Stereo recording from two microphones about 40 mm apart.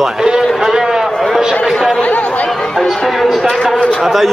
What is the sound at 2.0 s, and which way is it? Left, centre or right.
Chatter, left.